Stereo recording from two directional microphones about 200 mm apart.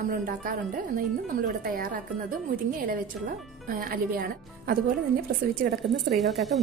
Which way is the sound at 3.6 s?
45° right (ahead or behind).